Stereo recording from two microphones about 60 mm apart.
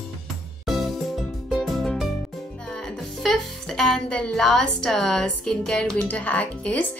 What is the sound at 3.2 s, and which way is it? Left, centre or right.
Music, centre.